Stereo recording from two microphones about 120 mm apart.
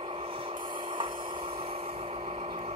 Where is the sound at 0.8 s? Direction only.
45° right (ahead or behind).